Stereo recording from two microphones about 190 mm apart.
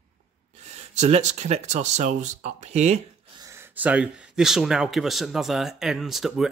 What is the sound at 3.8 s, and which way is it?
Speech, 5° right (ahead or behind).